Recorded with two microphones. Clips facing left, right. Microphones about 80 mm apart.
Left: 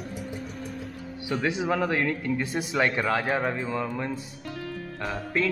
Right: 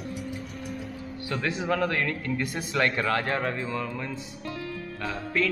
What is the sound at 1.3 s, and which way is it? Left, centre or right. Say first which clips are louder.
Speech: left 2 dB; centre.